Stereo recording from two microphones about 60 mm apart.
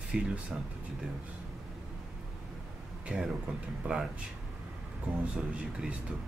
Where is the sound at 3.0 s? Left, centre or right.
Centre.